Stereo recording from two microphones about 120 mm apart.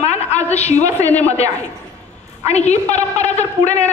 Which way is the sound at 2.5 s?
70° left (ahead or behind).